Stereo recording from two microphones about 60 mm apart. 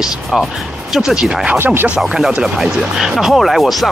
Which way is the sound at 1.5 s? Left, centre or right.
Right.